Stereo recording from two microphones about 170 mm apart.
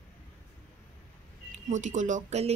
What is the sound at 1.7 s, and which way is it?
Speech, 45° right (ahead or behind).